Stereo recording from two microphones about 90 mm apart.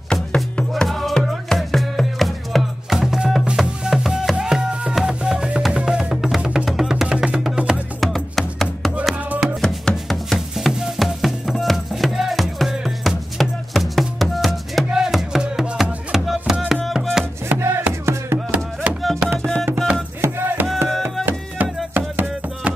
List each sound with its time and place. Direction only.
0.1 s music: 10° left (ahead or behind); by 7.8 s 10° right (ahead or behind)
8.0 s music: centre (ahead or behind)
9.3 s music: 15° right (ahead or behind)
9.6 s chopping: 5° left (ahead or behind)
10.7 s music: 5° right (ahead or behind)
17.5 s music: 15° right (ahead or behind)
18.0 s a sound: 30° right (ahead or behind)
19.0 s music: centre (ahead or behind)
19.5 s music: 25° right (ahead or behind)